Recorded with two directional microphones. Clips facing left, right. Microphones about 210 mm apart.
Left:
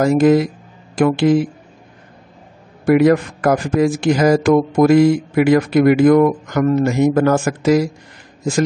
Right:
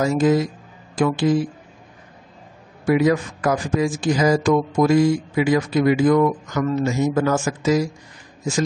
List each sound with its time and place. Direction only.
0.0 s a man's voice: 60° left (ahead or behind)
2.8 s a man's voice: 60° left (ahead or behind)